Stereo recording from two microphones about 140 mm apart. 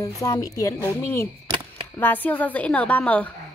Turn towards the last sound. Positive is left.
turn(degrees=10)  # may be behind; listen again after turning